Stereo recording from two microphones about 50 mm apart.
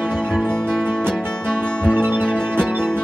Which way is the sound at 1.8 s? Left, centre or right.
Centre.